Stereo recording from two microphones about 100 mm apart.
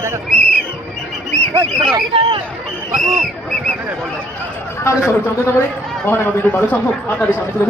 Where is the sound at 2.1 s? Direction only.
70° right (ahead or behind).